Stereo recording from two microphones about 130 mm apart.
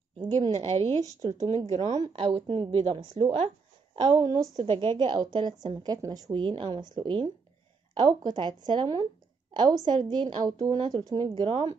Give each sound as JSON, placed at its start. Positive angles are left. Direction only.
{"t": 0.5, "sound": "a woman's voice", "side_deg": -55}
{"t": 2.0, "sound": "a woman's voice", "side_deg": -45}